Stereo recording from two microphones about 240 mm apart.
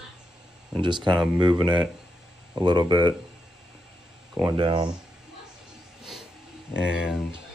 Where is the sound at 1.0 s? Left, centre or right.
Centre.